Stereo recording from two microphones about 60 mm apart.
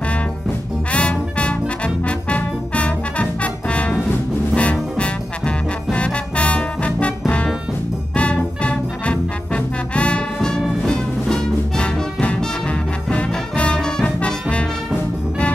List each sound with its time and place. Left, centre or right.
0.9 s music: left